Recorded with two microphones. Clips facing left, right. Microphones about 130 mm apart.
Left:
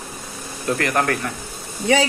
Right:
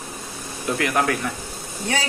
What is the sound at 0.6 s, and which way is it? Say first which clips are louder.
Speech: left 1 dB; 5° right (ahead or behind).